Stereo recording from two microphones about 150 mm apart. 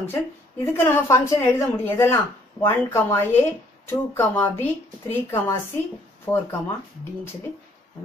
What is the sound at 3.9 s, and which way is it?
Speech, 15° left (ahead or behind).